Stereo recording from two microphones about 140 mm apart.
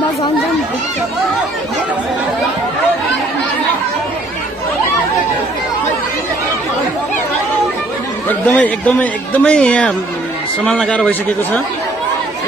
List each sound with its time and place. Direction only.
8.3 s speech: 10° left (ahead or behind)